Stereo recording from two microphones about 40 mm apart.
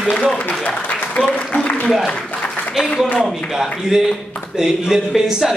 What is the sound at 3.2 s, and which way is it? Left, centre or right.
A man's voice, centre.